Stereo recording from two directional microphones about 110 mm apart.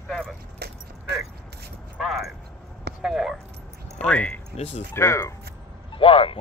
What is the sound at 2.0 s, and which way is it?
Keys jangling, centre (ahead or behind).